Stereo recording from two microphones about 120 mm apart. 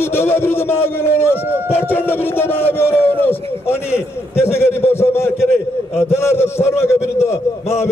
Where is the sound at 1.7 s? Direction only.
15° left (ahead or behind).